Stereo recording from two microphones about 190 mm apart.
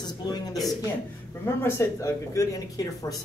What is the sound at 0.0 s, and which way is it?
Speech, 20° left (ahead or behind).